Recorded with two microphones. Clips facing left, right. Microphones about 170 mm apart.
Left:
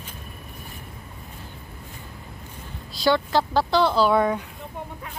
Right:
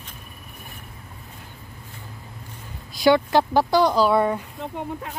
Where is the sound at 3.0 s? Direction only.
20° right (ahead or behind).